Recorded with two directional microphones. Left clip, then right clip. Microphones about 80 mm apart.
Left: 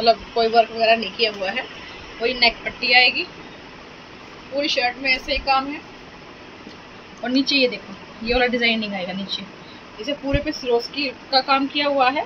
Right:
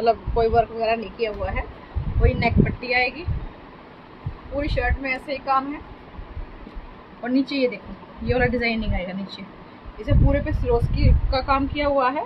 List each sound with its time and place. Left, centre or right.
0.0 s speech: centre
4.6 s a woman's voice: right
7.3 s speech: centre
10.0 s a woman's voice: right